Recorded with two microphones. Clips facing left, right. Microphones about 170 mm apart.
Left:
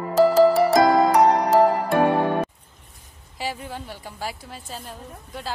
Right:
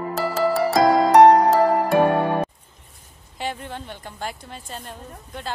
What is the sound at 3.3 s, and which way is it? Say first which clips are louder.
Speech: right 1 dB; 5° left (ahead or behind).